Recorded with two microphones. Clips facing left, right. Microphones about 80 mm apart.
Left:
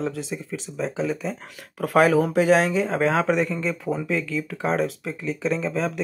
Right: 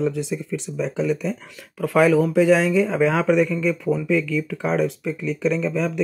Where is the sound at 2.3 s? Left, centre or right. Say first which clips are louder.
Right 2 dB; left.